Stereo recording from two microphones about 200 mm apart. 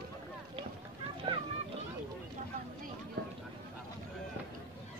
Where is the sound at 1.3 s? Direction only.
25° right (ahead or behind).